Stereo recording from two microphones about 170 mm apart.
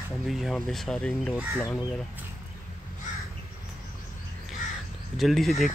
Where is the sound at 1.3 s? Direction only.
20° left (ahead or behind).